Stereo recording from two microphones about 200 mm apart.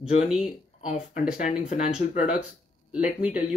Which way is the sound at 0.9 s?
40° left (ahead or behind).